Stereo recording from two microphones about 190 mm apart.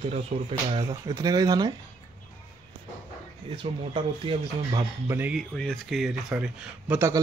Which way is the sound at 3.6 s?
25° right (ahead or behind).